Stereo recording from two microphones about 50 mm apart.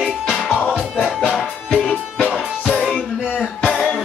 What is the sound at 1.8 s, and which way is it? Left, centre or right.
Music, left.